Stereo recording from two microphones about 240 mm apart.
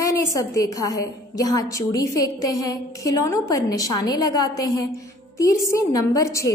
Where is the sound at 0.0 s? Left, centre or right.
Centre.